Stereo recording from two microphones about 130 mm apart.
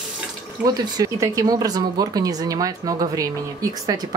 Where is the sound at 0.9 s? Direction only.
25° right (ahead or behind).